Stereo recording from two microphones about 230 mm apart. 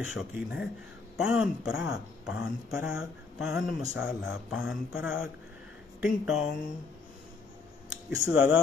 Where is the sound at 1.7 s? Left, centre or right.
Left.